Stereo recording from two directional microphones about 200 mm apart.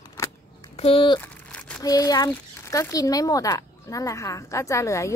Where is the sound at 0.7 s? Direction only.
30° left (ahead or behind).